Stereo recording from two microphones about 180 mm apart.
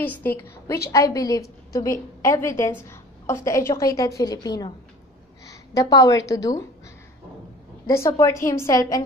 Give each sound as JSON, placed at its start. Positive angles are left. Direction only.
{"t": 0.0, "sound": "a woman's voice", "side_deg": 10}
{"t": 7.8, "sound": "a woman's voice", "side_deg": 15}